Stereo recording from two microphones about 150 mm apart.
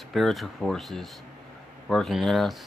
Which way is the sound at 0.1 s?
Centre (ahead or behind).